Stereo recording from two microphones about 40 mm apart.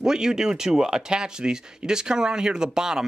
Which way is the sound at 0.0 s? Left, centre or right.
Centre.